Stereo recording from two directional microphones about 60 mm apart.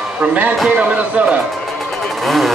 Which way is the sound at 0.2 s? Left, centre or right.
Right.